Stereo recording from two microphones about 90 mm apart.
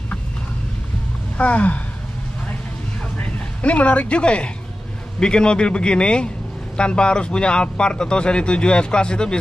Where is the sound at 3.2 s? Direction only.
15° left (ahead or behind).